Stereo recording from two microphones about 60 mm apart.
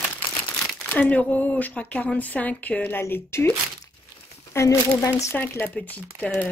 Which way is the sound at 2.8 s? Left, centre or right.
Left.